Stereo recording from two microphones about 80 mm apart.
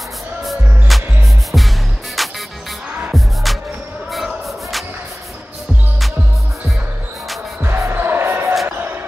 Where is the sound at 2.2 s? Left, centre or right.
Centre.